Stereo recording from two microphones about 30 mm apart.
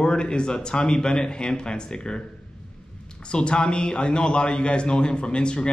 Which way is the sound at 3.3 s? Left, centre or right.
Left.